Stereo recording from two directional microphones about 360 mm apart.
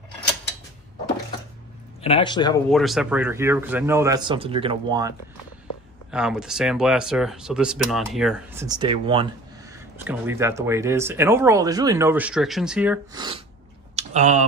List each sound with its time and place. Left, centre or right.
2.0 s speech: centre
2.7 s speech: centre
6.1 s speech: centre
13.9 s a sound: centre